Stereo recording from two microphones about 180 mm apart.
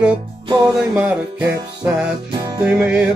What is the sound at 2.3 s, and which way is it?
Music, 25° right (ahead or behind).